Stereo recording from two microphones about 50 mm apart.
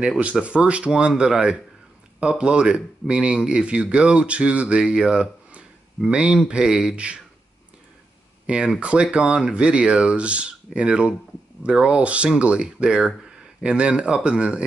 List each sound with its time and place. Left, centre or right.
0.2 s speech: right
8.5 s speech: centre